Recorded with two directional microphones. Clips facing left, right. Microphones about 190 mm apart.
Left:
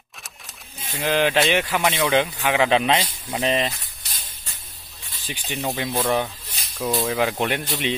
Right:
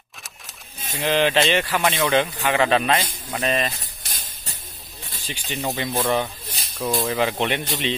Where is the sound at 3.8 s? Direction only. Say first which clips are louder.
Right 3 dB; 45° right (ahead or behind).